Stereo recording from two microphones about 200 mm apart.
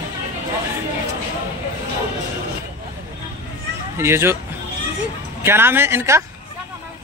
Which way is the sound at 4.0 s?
10° right (ahead or behind).